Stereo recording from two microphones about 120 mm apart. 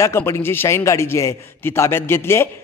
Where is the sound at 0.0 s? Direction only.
20° left (ahead or behind).